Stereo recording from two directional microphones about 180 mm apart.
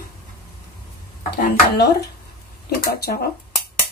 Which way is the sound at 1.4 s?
60° left (ahead or behind).